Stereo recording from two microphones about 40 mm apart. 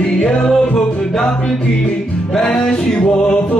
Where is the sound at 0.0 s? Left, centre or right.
Centre.